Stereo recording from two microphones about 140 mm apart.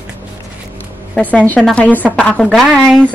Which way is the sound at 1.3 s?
10° left (ahead or behind).